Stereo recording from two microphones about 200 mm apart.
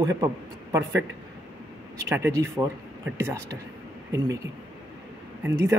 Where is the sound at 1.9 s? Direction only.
15° right (ahead or behind).